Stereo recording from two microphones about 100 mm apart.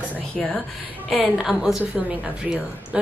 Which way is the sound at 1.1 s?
Centre (ahead or behind).